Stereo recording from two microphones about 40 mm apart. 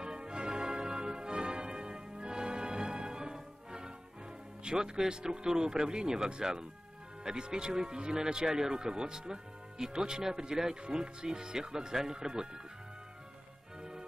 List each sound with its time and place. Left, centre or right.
0.0 s music: centre
4.6 s speech: centre